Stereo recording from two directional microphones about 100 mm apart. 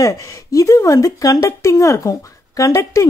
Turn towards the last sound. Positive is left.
turn(degrees=35)  # may be behind; listen again after turning